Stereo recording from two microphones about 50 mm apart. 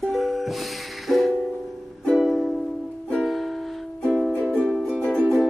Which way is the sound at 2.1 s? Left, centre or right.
Centre.